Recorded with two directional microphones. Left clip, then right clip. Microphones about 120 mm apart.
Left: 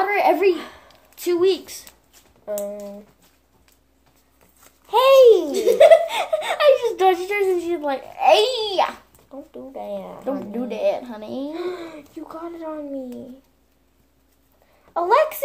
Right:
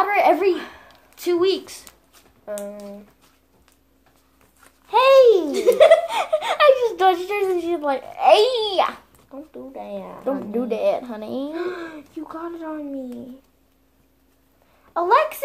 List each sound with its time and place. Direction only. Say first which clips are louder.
0.0 s a sound: even; 25° right (ahead or behind)
0.6 s a sound: right 1 dB; 30° left (ahead or behind)
0.8 s speech: even; 20° right (ahead or behind)
2.5 s speech: left 3 dB; 25° left (ahead or behind)
4.8 s speech: left 1 dB; 25° left (ahead or behind)
5.5 s speech: left 1 dB; 15° right (ahead or behind)
9.3 s speech: left 1 dB; 25° left (ahead or behind)
10.2 s a woman's voice: right 4 dB; 35° right (ahead or behind)
11.5 s speech: right 1 dB; 25° left (ahead or behind)
15.0 s speech: even; 20° left (ahead or behind)